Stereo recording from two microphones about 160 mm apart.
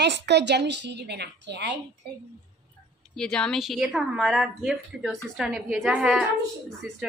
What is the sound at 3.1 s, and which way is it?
A woman's voice, 5° left (ahead or behind).